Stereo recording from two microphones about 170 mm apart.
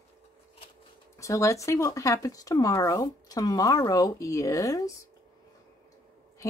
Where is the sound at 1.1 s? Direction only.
20° left (ahead or behind).